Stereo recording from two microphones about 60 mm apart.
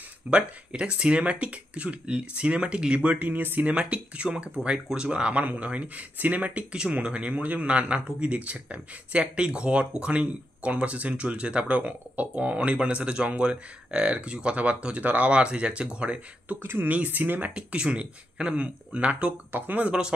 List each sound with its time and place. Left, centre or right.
0.3 s speech: centre
3.7 s speech: centre
16.6 s speech: right
16.9 s speech: right